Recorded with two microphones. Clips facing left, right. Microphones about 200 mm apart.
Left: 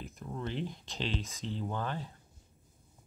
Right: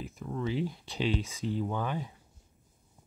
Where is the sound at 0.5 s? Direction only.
5° right (ahead or behind).